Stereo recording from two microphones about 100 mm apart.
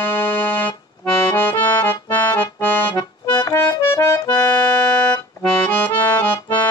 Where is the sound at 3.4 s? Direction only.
35° left (ahead or behind).